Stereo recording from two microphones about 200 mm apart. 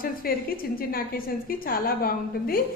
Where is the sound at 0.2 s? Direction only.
50° left (ahead or behind).